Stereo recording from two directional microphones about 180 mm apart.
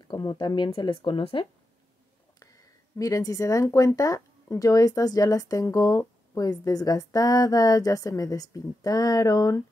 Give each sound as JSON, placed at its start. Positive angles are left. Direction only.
{"t": 0.1, "sound": "speech", "side_deg": 25}